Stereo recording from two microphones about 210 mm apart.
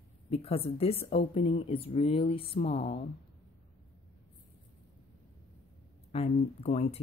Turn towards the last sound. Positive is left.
turn(degrees=30)  # may be behind; listen again after turning